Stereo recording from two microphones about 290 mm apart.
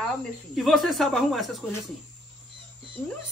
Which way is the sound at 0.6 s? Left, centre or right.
Centre.